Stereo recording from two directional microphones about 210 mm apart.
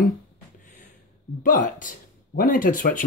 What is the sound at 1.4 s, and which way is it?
Speech, 40° left (ahead or behind).